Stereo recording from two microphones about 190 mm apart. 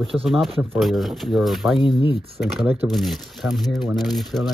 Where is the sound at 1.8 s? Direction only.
25° left (ahead or behind).